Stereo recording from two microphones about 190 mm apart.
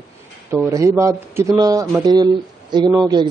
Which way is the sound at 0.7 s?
15° right (ahead or behind).